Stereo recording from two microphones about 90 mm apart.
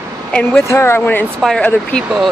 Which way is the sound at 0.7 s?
30° left (ahead or behind).